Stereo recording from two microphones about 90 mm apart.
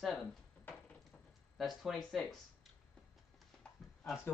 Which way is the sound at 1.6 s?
Centre (ahead or behind).